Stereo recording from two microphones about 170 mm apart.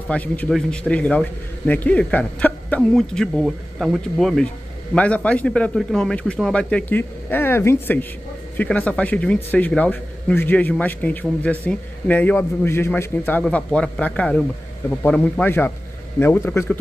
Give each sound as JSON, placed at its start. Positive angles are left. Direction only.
{"t": 0.1, "sound": "a man's voice", "side_deg": 10}